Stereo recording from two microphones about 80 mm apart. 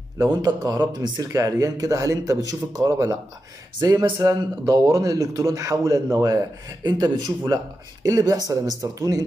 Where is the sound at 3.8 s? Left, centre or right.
Right.